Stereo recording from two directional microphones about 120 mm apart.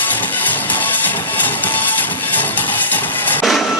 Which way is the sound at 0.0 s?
15° left (ahead or behind).